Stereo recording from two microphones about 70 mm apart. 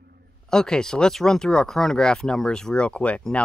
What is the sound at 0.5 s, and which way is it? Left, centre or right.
Speech, centre.